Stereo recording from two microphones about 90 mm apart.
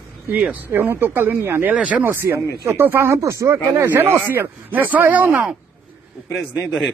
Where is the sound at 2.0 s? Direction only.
25° right (ahead or behind).